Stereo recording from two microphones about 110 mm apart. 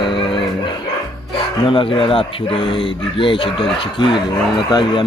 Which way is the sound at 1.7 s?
50° left (ahead or behind).